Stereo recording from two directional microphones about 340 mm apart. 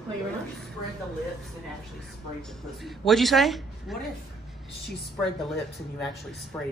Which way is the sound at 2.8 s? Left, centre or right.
Centre.